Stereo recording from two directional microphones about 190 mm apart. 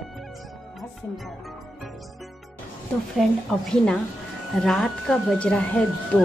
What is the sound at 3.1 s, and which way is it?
A woman's voice, centre (ahead or behind).